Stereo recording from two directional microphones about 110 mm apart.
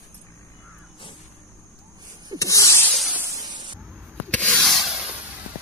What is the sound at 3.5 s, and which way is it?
Spray, 40° right (ahead or behind).